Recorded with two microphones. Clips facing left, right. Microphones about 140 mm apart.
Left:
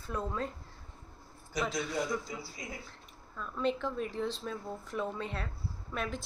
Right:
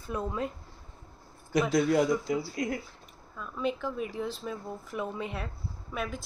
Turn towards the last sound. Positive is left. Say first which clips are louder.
# right 2 dB
turn(degrees=-5)  # may be behind; listen again after turning